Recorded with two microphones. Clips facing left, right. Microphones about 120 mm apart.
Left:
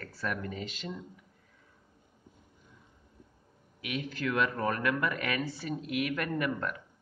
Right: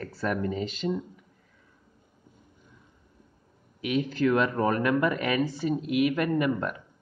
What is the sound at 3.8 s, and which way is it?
Speech, 30° right (ahead or behind).